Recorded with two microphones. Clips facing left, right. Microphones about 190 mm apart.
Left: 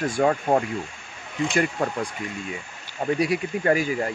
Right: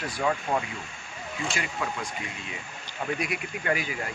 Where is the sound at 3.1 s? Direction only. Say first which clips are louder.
Left 9 dB; 35° left (ahead or behind).